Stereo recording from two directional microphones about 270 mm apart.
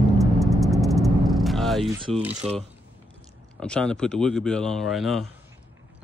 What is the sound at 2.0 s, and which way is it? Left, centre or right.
Speech, centre.